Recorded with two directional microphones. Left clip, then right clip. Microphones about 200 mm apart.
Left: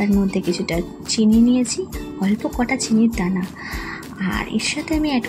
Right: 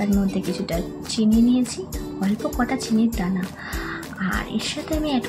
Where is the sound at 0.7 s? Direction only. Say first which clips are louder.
Left 3 dB; 20° left (ahead or behind).